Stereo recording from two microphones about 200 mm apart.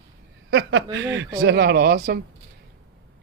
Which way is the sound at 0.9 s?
65° right (ahead or behind).